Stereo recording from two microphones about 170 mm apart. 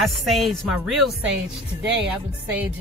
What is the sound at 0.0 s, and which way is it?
Speech, centre (ahead or behind).